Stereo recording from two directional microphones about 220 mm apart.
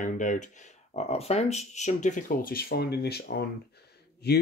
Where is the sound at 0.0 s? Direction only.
35° left (ahead or behind).